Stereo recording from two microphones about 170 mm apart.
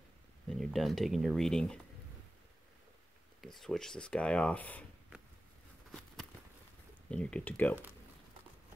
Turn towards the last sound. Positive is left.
turn(degrees=10)  # may be behind; listen again after turning